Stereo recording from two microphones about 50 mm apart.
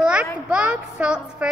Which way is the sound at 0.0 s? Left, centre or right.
Right.